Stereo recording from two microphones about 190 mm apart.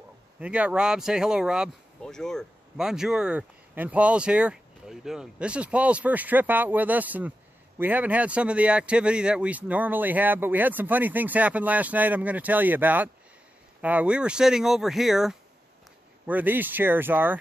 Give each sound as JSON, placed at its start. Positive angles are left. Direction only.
{"t": 0.4, "sound": "speech", "side_deg": -5}